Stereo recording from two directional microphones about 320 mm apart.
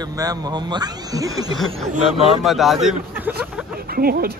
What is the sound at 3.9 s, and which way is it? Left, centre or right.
Speech, right.